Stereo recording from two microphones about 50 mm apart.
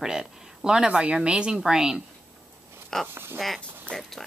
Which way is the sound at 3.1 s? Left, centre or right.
Right.